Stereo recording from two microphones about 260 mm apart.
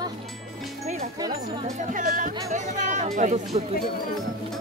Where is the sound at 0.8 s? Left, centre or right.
Right.